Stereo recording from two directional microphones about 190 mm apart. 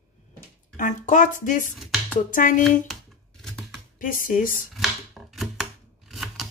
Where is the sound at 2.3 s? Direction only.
45° left (ahead or behind).